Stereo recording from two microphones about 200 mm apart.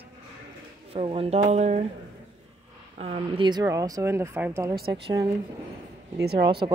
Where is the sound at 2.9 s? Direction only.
30° right (ahead or behind).